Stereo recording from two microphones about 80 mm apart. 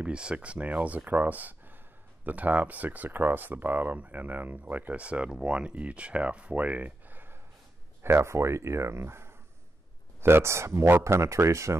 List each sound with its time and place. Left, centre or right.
0.0 s speech: centre; by 11.7 s right